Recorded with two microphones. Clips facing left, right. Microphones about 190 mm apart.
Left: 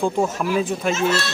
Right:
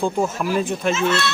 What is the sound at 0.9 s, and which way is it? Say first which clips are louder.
Speech: right 1 dB; 40° left (ahead or behind).